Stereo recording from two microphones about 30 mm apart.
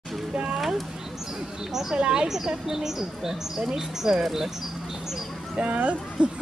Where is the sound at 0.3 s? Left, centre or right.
Right.